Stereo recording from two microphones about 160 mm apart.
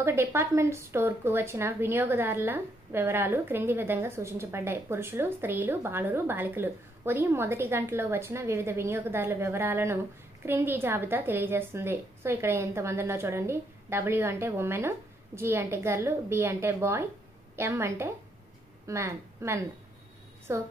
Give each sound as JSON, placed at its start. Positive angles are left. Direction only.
{"t": 0.0, "sound": "speech", "side_deg": -15}